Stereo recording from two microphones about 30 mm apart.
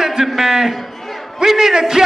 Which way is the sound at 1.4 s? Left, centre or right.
Centre.